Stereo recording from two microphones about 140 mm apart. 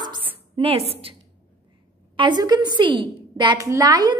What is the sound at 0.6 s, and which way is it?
Speech, 45° right (ahead or behind).